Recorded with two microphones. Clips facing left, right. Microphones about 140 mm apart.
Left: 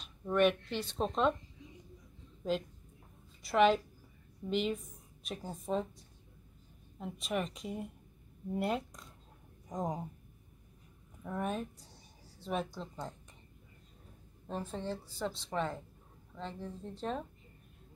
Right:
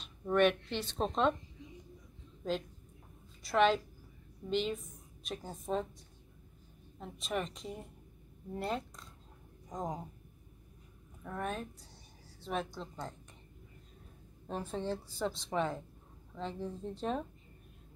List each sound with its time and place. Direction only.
0.0 s speech: 5° left (ahead or behind)
3.4 s speech: 5° left (ahead or behind)
7.0 s speech: 5° left (ahead or behind)
11.2 s speech: 5° left (ahead or behind)
14.5 s a woman's voice: 5° right (ahead or behind)